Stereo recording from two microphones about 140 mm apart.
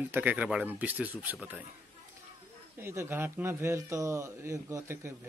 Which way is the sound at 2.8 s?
15° right (ahead or behind).